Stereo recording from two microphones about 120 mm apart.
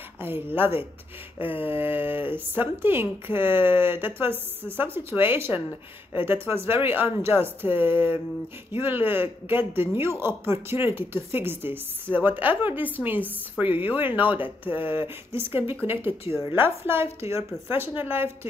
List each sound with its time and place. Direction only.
0.2 s a woman's voice: 15° right (ahead or behind)